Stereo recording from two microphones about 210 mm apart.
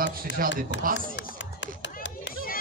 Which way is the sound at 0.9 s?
60° left (ahead or behind).